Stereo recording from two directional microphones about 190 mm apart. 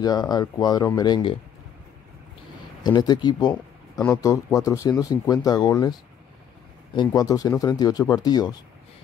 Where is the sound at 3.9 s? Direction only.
10° left (ahead or behind).